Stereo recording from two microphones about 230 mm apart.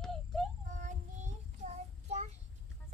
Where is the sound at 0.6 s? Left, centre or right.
Right.